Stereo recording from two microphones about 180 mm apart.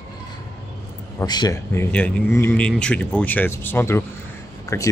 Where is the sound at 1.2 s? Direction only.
20° left (ahead or behind).